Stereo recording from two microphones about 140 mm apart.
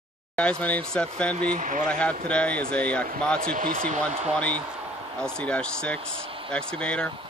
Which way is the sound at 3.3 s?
85° right.